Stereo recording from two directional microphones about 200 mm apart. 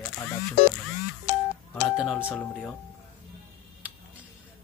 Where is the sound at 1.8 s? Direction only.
Centre (ahead or behind).